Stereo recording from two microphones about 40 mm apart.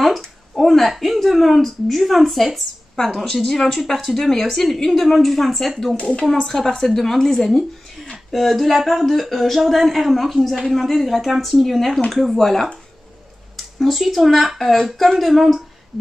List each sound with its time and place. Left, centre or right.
0.6 s a woman's voice: centre
5.9 s a woman's voice: left
6.4 s a woman's voice: centre
13.7 s a woman's voice: centre